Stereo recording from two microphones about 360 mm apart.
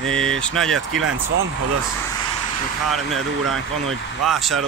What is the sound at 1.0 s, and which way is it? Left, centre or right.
Speech, right.